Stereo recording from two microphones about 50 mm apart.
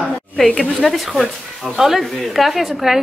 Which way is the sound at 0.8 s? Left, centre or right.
Centre.